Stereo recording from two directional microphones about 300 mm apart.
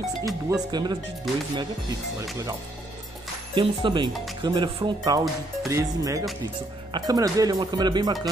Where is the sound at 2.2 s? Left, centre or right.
Centre.